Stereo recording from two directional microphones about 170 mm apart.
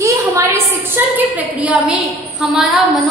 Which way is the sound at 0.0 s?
20° right (ahead or behind).